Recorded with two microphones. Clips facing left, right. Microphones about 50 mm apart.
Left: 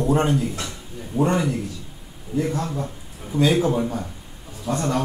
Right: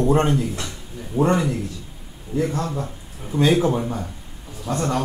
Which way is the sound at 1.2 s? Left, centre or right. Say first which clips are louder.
Right 1 dB; centre.